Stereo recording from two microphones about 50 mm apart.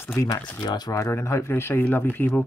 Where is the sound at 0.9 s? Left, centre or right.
Left.